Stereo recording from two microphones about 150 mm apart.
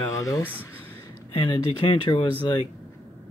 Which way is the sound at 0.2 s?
15° left (ahead or behind).